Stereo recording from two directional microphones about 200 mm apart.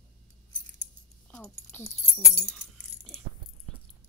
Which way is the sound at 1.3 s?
10° left (ahead or behind).